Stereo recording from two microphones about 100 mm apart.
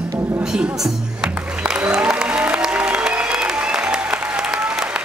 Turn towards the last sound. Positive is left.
turn(degrees=-10)  # may be behind; listen again after turning